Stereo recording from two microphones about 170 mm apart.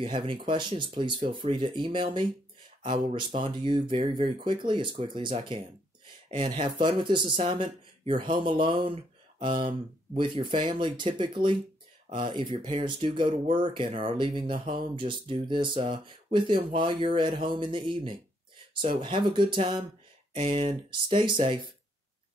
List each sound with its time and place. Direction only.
0.0 s speech: 30° right (ahead or behind)